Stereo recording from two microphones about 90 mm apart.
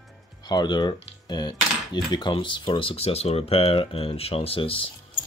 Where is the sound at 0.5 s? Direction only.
50° left (ahead or behind).